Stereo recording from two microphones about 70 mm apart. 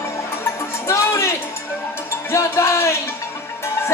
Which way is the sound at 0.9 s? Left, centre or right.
Left.